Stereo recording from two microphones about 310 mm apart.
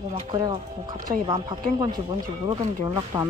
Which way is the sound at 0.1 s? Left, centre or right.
Centre.